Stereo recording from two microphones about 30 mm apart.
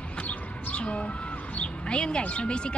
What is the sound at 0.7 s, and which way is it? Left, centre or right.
Speech, left.